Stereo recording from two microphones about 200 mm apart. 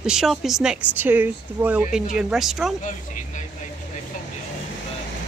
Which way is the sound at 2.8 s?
40° left (ahead or behind).